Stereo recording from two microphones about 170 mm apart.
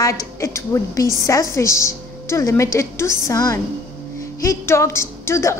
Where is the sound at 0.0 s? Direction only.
20° left (ahead or behind).